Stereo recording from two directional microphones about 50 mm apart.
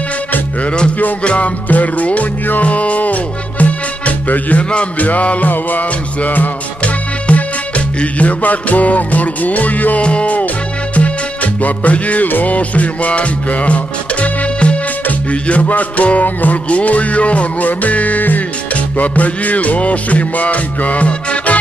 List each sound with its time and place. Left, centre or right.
0.9 s music: left